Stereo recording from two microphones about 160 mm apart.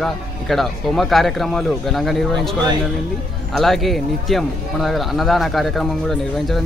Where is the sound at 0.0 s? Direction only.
Centre (ahead or behind).